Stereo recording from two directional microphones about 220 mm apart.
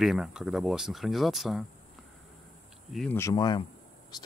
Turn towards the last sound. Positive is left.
turn(degrees=20)  # may be behind; listen again after turning